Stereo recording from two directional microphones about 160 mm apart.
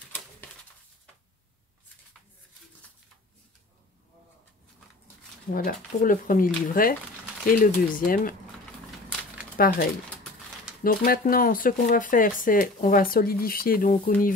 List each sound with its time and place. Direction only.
5.5 s speech: 55° left (ahead or behind)
9.6 s speech: 65° left (ahead or behind)
11.1 s speech: 65° left (ahead or behind)